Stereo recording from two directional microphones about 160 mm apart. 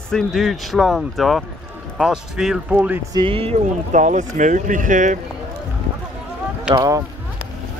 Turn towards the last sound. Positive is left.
turn(degrees=-20)  # may be behind; listen again after turning